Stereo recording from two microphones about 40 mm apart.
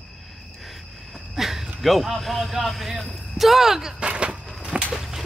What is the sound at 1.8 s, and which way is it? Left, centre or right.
Speech, centre.